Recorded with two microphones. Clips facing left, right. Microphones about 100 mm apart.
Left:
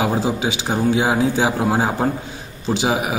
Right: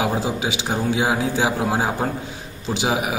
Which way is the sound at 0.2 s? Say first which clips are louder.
Left 3 dB; 10° right (ahead or behind).